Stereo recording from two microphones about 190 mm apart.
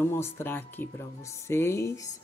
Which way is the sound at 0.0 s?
10° left (ahead or behind).